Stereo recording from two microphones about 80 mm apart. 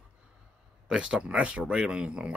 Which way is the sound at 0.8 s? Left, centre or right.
Centre.